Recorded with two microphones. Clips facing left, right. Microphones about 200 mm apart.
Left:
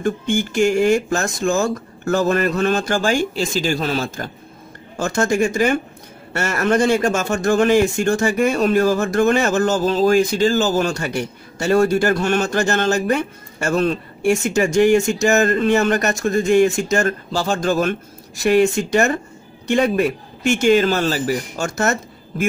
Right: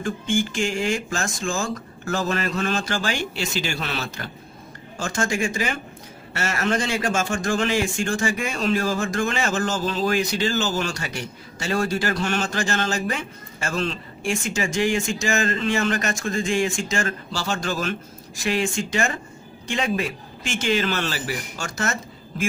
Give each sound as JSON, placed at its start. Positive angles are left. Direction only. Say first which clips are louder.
{"t": 0.6, "sound": "speech", "louder": "left 9 dB", "side_deg": 60}
{"t": 4.9, "sound": "a man's voice", "louder": "left 6 dB", "side_deg": 60}
{"t": 5.3, "sound": "speech", "louder": "left 8 dB", "side_deg": 40}
{"t": 7.4, "sound": "speech", "louder": "left 11 dB", "side_deg": 55}
{"t": 9.6, "sound": "speech", "louder": "left 7 dB", "side_deg": 40}
{"t": 13.0, "sound": "speech", "louder": "left 8 dB", "side_deg": 55}
{"t": 15.3, "sound": "speech", "louder": "left 7 dB", "side_deg": 50}